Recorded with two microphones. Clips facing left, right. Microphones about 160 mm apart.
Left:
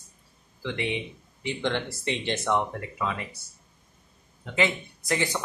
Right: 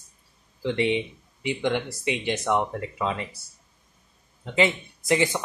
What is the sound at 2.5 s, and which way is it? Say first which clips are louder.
Speech: right 2 dB; 25° right (ahead or behind).